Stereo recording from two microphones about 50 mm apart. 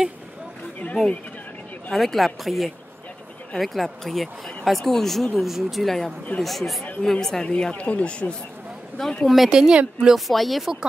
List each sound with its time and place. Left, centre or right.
1.9 s speech: centre; by 8.4 s left
9.3 s speech: centre
9.6 s speech: centre
10.1 s speech: centre